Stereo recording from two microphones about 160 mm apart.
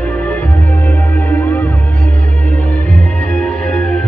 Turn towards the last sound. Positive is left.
turn(degrees=5)  # may be behind; listen again after turning